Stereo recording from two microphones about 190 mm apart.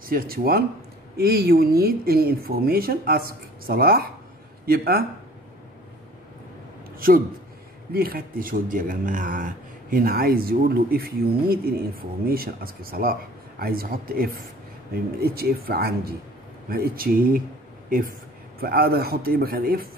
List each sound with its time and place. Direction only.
0.0 s speech: 50° right (ahead or behind)
7.9 s speech: 50° right (ahead or behind)